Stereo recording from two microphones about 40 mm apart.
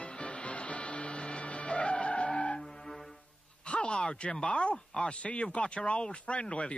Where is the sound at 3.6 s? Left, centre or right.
Left.